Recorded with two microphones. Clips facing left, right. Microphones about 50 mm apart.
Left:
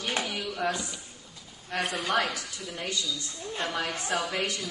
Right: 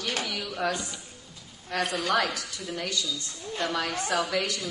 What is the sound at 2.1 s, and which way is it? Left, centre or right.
A woman's voice, left.